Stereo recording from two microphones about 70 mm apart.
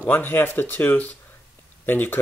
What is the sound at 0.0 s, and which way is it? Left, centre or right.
Speech, left.